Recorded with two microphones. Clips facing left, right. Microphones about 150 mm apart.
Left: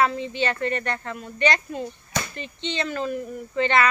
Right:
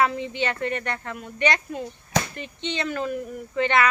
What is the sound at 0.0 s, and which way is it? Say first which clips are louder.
Speech: left 1 dB; 15° right (ahead or behind).